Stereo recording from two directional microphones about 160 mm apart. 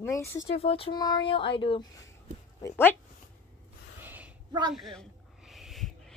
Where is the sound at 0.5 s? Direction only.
35° left (ahead or behind).